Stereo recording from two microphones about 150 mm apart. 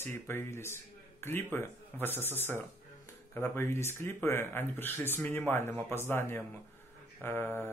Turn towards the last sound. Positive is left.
turn(degrees=15)  # may be behind; listen again after turning